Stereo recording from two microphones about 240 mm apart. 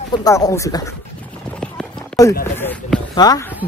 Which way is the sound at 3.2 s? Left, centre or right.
Centre.